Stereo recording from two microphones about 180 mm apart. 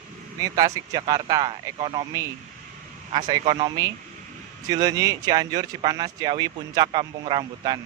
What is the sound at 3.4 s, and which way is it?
Speech, 35° right (ahead or behind).